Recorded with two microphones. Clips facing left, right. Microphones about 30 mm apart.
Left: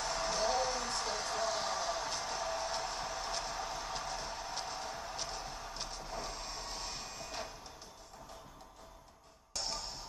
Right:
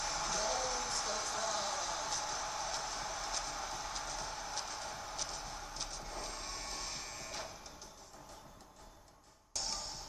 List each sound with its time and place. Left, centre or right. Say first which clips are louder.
0.2 s music: left 5 dB; left
4.7 s music: left 2 dB; centre
5.1 s music: left 1 dB; left
5.4 s clip-clop: left 1 dB; centre
6.1 s music: left 2 dB; centre